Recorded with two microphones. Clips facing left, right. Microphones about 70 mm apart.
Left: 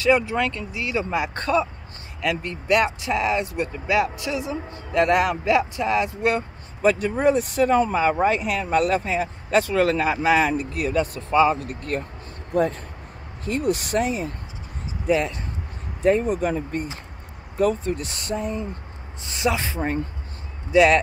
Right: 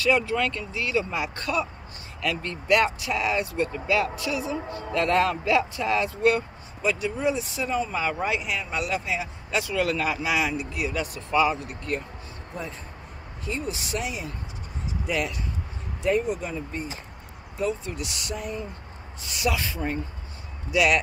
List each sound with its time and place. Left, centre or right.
0.0 s speech: left
2.2 s speech: left
6.8 s speech: left
8.0 s speech: left
11.5 s speech: left
16.0 s speech: left